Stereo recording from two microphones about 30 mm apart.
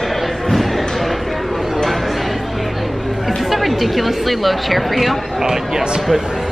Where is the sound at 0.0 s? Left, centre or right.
Centre.